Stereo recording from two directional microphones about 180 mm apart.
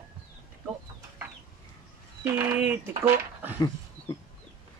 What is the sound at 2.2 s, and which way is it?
Speech, 10° right (ahead or behind).